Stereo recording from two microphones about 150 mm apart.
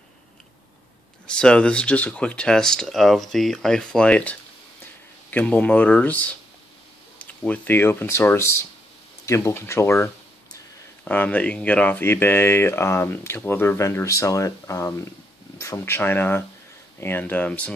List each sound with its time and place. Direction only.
1.2 s speech: 5° left (ahead or behind)
7.4 s speech: 10° left (ahead or behind)
11.1 s speech: 10° left (ahead or behind)